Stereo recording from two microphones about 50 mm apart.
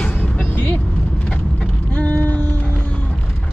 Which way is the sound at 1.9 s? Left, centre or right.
Left.